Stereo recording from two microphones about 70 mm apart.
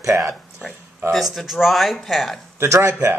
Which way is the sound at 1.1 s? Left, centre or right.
Centre.